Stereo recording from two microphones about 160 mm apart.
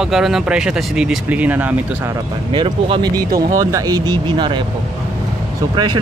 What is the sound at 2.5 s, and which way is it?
Speech, 30° right (ahead or behind).